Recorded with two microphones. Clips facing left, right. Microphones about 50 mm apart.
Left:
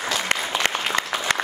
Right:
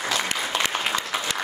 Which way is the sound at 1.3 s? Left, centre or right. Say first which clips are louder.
Left 9 dB; left.